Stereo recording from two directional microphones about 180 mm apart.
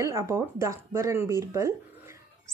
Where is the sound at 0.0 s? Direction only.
15° right (ahead or behind).